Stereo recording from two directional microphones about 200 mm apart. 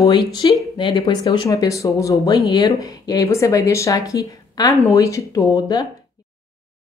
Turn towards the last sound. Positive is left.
turn(degrees=20)  # may be behind; listen again after turning